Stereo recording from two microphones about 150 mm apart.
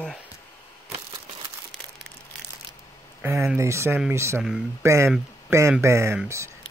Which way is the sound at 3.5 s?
20° right (ahead or behind).